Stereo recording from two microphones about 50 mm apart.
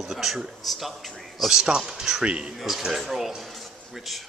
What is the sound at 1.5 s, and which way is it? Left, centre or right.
Speech, centre.